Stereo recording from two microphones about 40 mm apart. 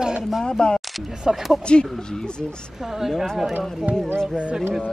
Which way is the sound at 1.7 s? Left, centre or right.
Left.